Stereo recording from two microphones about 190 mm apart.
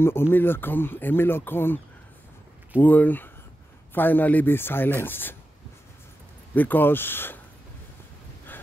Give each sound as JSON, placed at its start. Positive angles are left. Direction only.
{"t": 0.0, "sound": "speech", "side_deg": 10}
{"t": 2.8, "sound": "speech", "side_deg": 10}
{"t": 6.5, "sound": "speech", "side_deg": 10}